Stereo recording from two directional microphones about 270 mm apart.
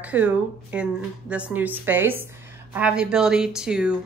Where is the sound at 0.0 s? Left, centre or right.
Centre.